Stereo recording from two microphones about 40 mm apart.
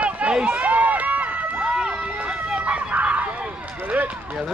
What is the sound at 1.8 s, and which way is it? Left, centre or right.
Run, centre.